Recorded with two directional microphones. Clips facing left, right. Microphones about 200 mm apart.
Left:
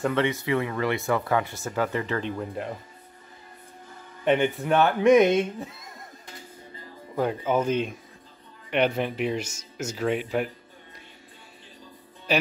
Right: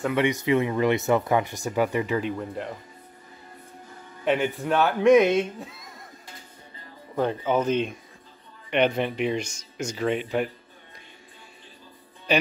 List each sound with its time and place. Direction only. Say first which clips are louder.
0.1 s speech: right 2 dB; 15° right (ahead or behind)
2.3 s speech: even; centre (ahead or behind)
4.2 s speech: left 2 dB; centre (ahead or behind)
7.2 s speech: right 1 dB; 10° left (ahead or behind)
12.3 s speech: right 2 dB; 5° left (ahead or behind)